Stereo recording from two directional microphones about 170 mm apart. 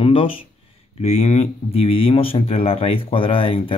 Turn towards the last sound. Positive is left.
turn(degrees=30)  # may be behind; listen again after turning